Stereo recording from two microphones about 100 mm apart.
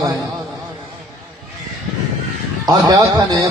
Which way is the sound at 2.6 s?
40° right (ahead or behind).